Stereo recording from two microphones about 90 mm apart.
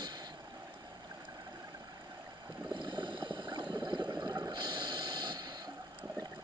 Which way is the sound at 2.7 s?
60° right (ahead or behind).